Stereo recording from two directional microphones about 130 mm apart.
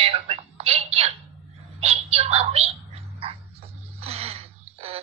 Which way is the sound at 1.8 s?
50° right (ahead or behind).